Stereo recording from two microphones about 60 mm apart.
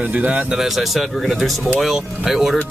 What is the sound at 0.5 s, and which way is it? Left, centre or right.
Speech, centre.